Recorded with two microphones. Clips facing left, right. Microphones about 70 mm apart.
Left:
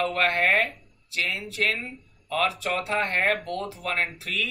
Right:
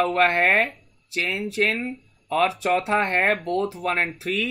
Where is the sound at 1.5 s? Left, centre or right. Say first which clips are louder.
Right 4 dB; right.